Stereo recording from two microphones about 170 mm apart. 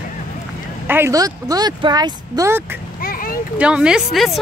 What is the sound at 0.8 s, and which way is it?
Speech, 15° right (ahead or behind).